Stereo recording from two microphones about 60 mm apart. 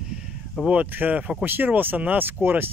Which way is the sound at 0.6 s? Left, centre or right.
Right.